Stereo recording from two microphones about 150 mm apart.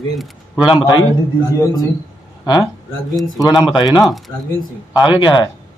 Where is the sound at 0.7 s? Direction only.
30° left (ahead or behind).